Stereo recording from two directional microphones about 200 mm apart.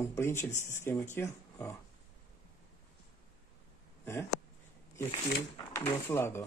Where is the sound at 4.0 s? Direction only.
15° left (ahead or behind).